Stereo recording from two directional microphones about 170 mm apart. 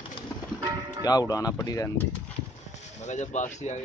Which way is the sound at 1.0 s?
20° left (ahead or behind).